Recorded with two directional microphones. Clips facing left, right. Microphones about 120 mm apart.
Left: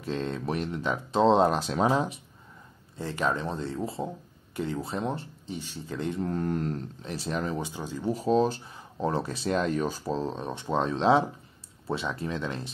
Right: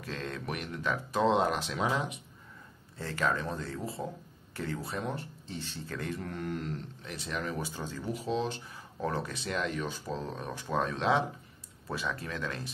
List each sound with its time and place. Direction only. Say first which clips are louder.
0.0 s speech: left 7 dB; 25° left (ahead or behind)
3.0 s speech: left 3 dB; 20° left (ahead or behind)
5.5 s speech: left 4 dB; 15° left (ahead or behind); by 7.6 s 30° left (ahead or behind)
7.6 s speech: left 3 dB; 15° left (ahead or behind)
8.0 s speech: left 9 dB; 40° left (ahead or behind)